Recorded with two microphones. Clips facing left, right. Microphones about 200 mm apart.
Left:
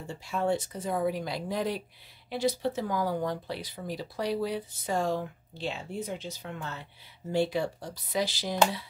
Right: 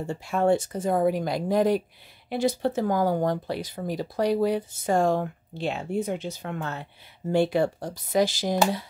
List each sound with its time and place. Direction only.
0.0 s speech: 55° right (ahead or behind)